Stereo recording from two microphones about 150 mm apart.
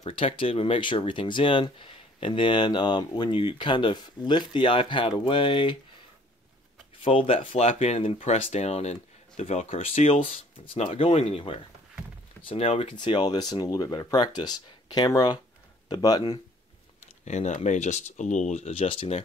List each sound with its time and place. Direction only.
0.0 s speech: 35° left (ahead or behind)
7.0 s speech: 35° left (ahead or behind)
17.2 s speech: 50° left (ahead or behind)